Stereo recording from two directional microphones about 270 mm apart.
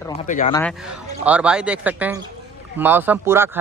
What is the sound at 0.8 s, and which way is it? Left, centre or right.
A man's voice, centre.